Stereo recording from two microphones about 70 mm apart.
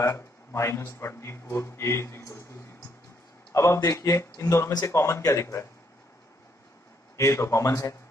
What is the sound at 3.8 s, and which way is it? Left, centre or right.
Speech, left.